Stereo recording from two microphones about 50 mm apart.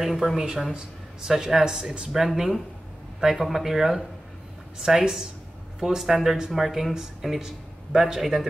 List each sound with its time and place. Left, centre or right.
0.0 s speech: centre